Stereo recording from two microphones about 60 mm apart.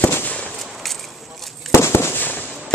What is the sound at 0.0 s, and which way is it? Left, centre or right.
Firecracker, left.